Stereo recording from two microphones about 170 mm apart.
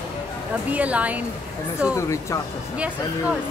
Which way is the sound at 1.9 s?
15° left (ahead or behind).